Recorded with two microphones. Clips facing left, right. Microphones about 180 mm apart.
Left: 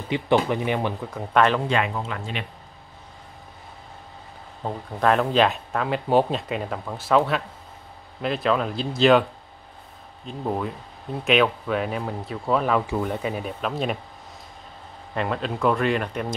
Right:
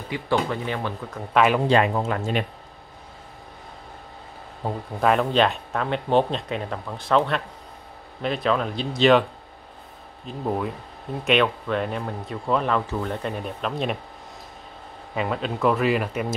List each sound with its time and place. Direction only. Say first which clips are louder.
0.1 s speech: left 3 dB; 25° left (ahead or behind)
1.3 s speech: even; 5° right (ahead or behind)
1.7 s speech: right 5 dB; 40° right (ahead or behind)
4.6 s speech: even; centre (ahead or behind)
10.2 s speech: right 1 dB; centre (ahead or behind)
15.1 s speech: even; centre (ahead or behind)